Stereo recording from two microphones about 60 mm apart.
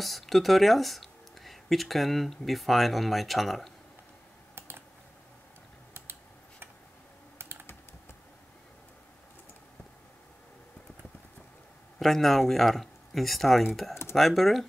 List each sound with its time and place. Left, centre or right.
0.0 s speech: centre
4.6 s typing: right
12.0 s speech: centre